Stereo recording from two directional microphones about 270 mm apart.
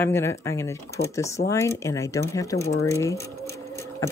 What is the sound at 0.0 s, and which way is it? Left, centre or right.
Speech, centre.